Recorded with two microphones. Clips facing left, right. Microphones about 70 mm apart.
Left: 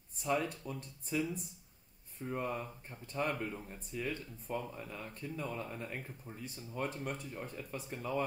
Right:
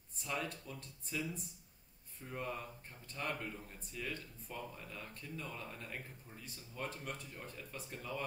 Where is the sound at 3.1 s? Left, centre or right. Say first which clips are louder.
Left 6 dB; left.